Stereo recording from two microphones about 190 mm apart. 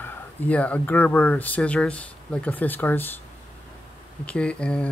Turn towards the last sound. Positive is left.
turn(degrees=5)  # may be behind; listen again after turning